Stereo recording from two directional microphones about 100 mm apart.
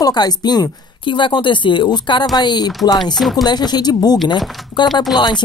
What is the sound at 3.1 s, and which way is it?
Speech, centre (ahead or behind).